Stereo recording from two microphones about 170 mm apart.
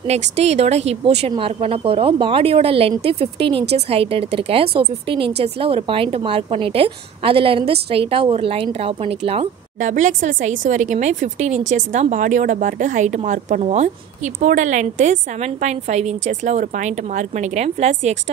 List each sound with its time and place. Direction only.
0.0 s a woman's voice: 40° right (ahead or behind)
9.8 s a woman's voice: 45° right (ahead or behind)